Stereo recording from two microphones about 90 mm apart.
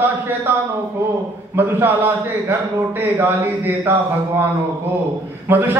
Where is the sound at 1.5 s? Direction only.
25° right (ahead or behind).